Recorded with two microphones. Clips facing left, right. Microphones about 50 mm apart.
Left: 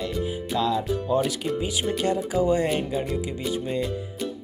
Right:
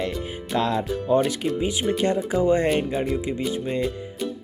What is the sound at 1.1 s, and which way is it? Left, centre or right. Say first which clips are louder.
Speech: right 4 dB; right.